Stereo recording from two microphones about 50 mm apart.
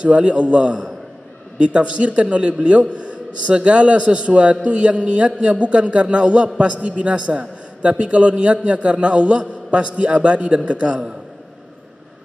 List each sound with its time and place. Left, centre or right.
0.0 s a man's voice: right